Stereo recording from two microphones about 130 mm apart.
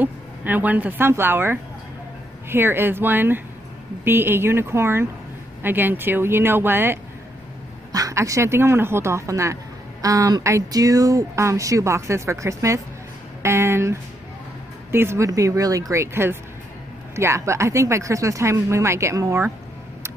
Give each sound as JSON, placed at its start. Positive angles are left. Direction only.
{"t": 0.0, "sound": "speech", "side_deg": -15}
{"t": 13.4, "sound": "a sound", "side_deg": -20}
{"t": 14.9, "sound": "speech", "side_deg": -20}